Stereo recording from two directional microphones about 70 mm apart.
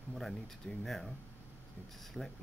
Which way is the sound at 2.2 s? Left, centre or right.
Centre.